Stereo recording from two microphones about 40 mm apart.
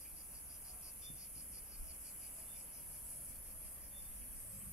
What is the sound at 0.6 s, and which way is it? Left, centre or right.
Cricket, centre.